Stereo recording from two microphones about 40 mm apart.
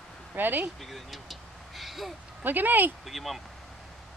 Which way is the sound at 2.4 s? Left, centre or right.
Right.